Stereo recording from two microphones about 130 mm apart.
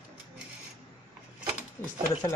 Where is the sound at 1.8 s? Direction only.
20° left (ahead or behind).